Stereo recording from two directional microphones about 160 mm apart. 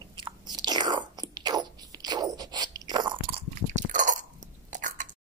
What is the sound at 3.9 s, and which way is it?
Chewing, 50° right (ahead or behind).